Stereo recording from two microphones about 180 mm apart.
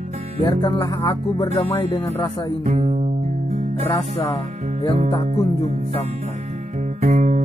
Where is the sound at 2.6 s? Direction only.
40° right (ahead or behind).